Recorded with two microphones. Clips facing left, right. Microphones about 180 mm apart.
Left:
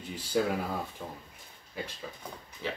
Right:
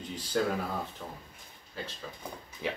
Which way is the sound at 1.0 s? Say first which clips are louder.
Left 1 dB; 20° left (ahead or behind).